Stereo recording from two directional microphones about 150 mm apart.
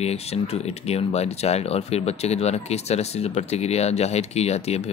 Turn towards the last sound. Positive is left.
turn(degrees=45)  # may be behind; listen again after turning